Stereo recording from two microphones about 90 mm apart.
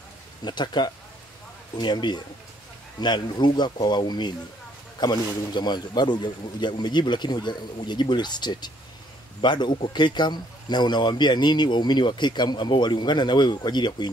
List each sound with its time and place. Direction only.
0.4 s a man's voice: 55° left (ahead or behind)